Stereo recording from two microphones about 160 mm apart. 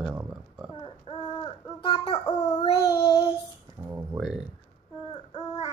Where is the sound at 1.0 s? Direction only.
35° left (ahead or behind).